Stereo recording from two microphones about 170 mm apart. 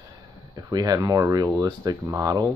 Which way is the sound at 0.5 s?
25° right (ahead or behind).